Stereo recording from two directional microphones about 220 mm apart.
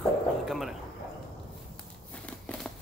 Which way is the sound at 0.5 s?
Centre (ahead or behind).